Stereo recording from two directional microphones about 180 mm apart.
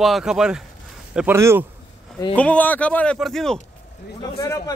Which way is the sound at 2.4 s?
10° left (ahead or behind).